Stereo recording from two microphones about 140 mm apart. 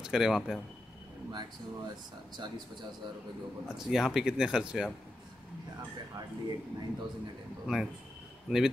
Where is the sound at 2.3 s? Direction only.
30° right (ahead or behind).